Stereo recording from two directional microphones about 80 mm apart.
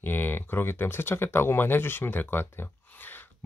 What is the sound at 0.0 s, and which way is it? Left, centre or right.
Speech, left.